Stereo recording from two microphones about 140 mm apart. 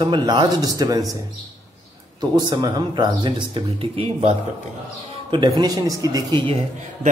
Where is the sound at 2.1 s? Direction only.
30° right (ahead or behind).